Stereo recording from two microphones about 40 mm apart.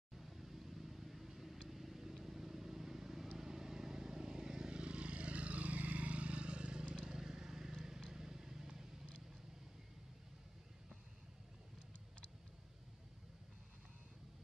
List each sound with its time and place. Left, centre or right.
0.2 s vehicle: centre